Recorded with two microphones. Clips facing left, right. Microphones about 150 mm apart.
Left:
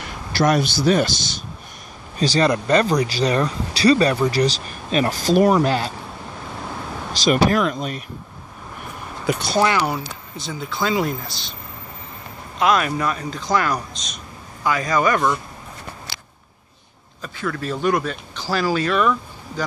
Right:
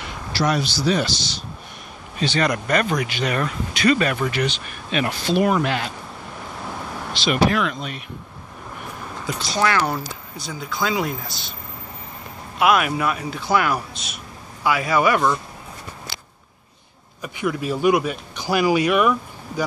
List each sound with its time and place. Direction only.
0.0 s speech: 50° left (ahead or behind)
2.1 s speech: 35° left (ahead or behind)
7.2 s speech: 40° left (ahead or behind)
9.2 s speech: 60° left (ahead or behind)
9.6 s speech: 20° left (ahead or behind)
10.5 s speech: centre (ahead or behind)
12.5 s a man's voice: 10° right (ahead or behind)
17.2 s speech: 15° right (ahead or behind)